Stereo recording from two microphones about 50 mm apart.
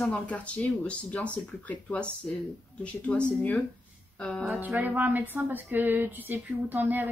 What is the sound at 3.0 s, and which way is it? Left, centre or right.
Speech, left.